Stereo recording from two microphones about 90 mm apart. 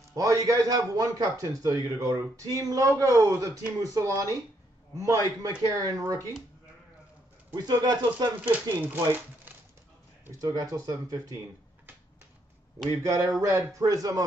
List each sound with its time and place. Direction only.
0.1 s a man's voice: 40° right (ahead or behind)
7.5 s speech: 50° right (ahead or behind)
8.5 s speech: 20° right (ahead or behind)
10.4 s a man's voice: 40° right (ahead or behind)
12.7 s a man's voice: 40° right (ahead or behind)
13.8 s speech: 45° right (ahead or behind)